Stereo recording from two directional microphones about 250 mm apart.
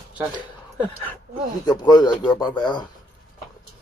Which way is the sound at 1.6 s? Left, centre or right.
Centre.